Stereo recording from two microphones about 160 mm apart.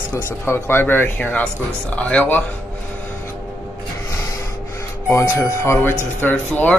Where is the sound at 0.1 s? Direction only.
15° left (ahead or behind).